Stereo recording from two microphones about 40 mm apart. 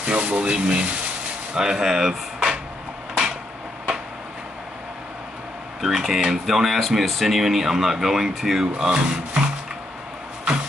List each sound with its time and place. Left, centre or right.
0.0 s speech: right; by 2.5 s centre
5.8 s speech: centre